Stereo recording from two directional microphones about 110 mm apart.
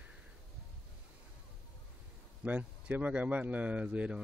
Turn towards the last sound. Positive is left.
turn(degrees=-10)  # may be behind; listen again after turning